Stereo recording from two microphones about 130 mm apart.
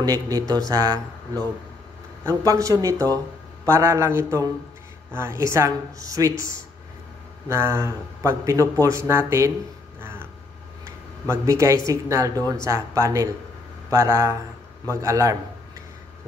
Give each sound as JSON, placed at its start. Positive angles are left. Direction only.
{"t": 0.0, "sound": "a man's voice", "side_deg": -30}
{"t": 7.4, "sound": "a man's voice", "side_deg": -20}
{"t": 11.2, "sound": "a man's voice", "side_deg": -25}